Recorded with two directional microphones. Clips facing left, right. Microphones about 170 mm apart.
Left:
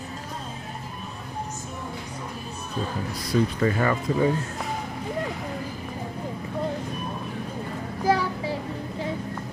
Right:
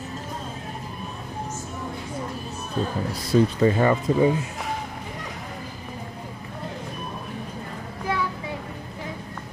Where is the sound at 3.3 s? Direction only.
25° right (ahead or behind).